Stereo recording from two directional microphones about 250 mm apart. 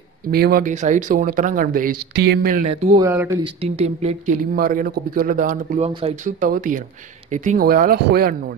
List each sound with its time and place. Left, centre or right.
0.3 s speech: right
2.6 s speech: right
3.0 s speech: centre
3.4 s speech: right